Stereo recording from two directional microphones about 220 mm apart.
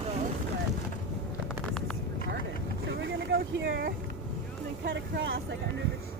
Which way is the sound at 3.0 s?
50° right (ahead or behind).